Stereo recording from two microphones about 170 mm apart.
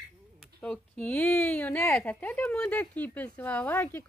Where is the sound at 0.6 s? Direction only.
10° left (ahead or behind).